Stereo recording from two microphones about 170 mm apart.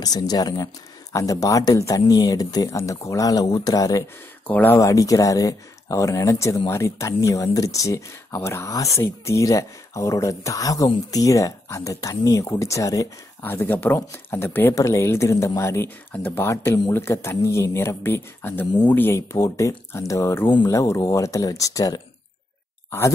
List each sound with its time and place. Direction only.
0.0 s speech: 20° left (ahead or behind)
4.5 s speech: 10° left (ahead or behind)